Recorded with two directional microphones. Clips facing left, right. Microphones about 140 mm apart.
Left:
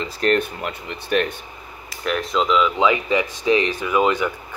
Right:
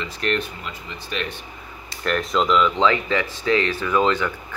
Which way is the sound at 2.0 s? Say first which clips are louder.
Even; centre (ahead or behind).